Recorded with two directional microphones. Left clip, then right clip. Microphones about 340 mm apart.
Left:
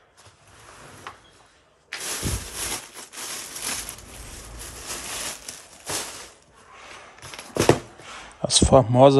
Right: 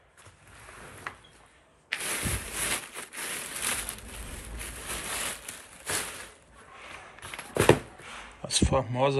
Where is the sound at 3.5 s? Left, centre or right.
Centre.